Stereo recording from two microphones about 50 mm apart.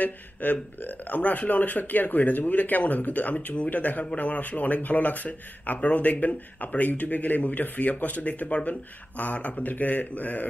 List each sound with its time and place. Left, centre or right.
0.0 s speech: left